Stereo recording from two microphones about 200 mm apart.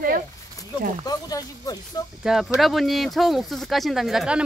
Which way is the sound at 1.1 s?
20° left (ahead or behind).